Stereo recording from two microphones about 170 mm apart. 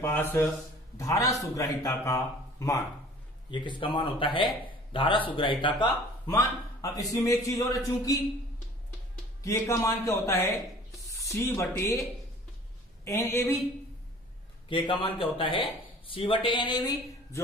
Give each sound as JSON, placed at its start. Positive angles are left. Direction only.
{"t": 0.0, "sound": "a man's voice", "side_deg": 10}
{"t": 6.2, "sound": "a man's voice", "side_deg": 20}
{"t": 9.4, "sound": "a man's voice", "side_deg": 20}
{"t": 11.1, "sound": "a sound", "side_deg": 15}
{"t": 11.5, "sound": "a man's voice", "side_deg": 15}
{"t": 13.0, "sound": "a man's voice", "side_deg": 15}
{"t": 14.7, "sound": "a man's voice", "side_deg": 30}